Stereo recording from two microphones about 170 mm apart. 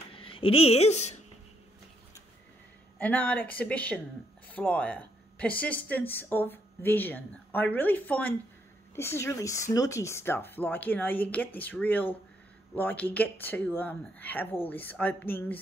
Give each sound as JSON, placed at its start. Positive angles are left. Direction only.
{"t": 0.1, "sound": "speech", "side_deg": 30}
{"t": 3.0, "sound": "speech", "side_deg": 10}